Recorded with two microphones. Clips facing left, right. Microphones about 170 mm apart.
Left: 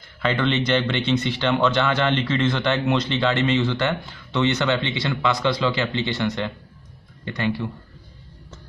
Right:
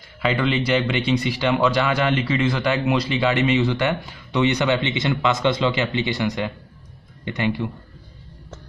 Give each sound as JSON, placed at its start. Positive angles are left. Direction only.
{"t": 0.2, "sound": "a man's voice", "side_deg": -10}